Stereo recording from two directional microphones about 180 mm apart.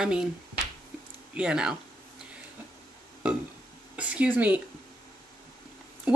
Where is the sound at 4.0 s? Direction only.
10° right (ahead or behind).